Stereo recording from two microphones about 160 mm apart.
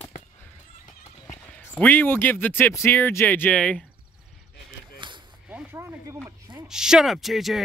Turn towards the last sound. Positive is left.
turn(degrees=0)  # may be behind; listen again after turning